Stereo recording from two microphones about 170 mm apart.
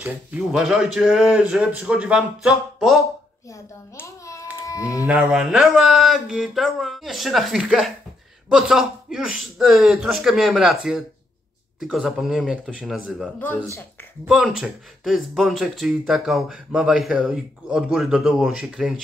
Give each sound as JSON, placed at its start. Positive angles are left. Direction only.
{"t": 0.0, "sound": "speech", "side_deg": -5}
{"t": 3.4, "sound": "a child's voice", "side_deg": 15}
{"t": 5.0, "sound": "speech", "side_deg": -5}